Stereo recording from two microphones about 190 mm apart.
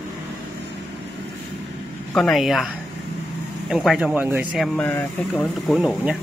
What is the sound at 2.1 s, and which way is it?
Speech, centre (ahead or behind).